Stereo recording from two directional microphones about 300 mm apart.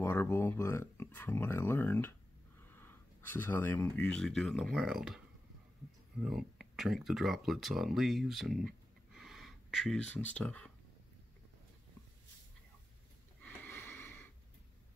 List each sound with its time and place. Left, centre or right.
0.0 s speech: centre
13.4 s wheeze: centre